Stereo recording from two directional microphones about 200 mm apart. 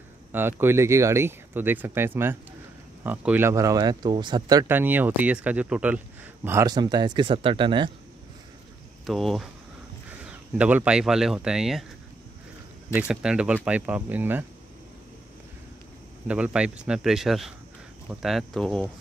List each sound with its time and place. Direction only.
0.3 s speech: 10° right (ahead or behind)
9.0 s speech: centre (ahead or behind)
12.9 s speech: 5° right (ahead or behind)
16.3 s speech: 5° right (ahead or behind)